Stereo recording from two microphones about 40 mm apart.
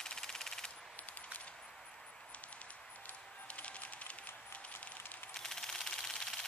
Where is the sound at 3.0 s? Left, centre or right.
Left.